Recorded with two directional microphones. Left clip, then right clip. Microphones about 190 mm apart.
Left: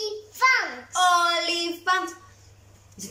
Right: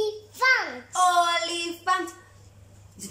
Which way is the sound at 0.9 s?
Centre (ahead or behind).